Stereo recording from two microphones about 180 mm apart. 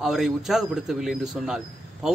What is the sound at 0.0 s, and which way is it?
A man's voice, centre (ahead or behind).